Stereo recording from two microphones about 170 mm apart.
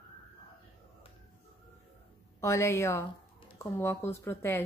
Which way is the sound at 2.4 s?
15° left (ahead or behind).